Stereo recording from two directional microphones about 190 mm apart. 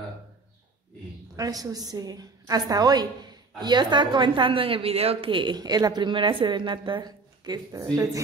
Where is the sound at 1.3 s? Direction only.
20° right (ahead or behind).